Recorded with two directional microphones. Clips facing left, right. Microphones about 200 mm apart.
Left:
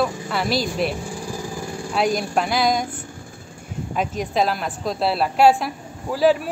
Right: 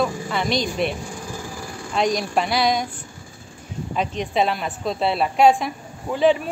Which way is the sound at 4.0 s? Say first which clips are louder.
Even; centre (ahead or behind).